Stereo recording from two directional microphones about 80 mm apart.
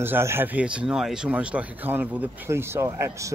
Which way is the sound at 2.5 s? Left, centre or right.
Right.